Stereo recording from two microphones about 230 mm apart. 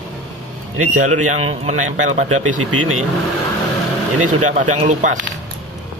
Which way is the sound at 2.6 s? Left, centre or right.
Right.